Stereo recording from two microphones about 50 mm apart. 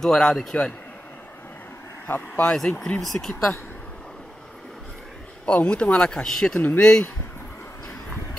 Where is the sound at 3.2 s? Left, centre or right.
Left.